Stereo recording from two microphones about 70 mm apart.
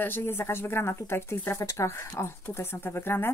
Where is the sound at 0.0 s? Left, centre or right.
Left.